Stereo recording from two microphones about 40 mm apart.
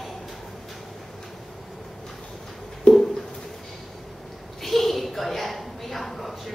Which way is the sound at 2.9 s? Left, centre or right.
Centre.